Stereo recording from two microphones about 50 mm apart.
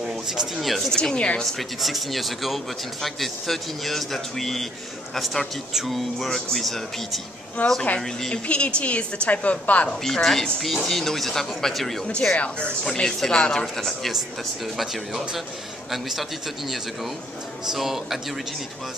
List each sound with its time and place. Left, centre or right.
0.0 s speech: centre
1.1 s a woman's voice: left
1.4 s speech: centre
7.6 s a woman's voice: left
8.0 s speech: centre
8.5 s a woman's voice: left
9.8 s speech: centre
12.2 s a woman's voice: centre
13.7 s speech: centre